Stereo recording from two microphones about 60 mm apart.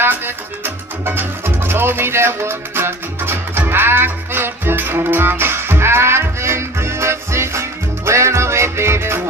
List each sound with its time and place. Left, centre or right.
1.7 s music: right